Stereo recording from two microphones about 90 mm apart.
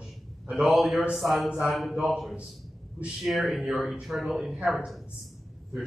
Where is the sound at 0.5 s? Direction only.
15° right (ahead or behind).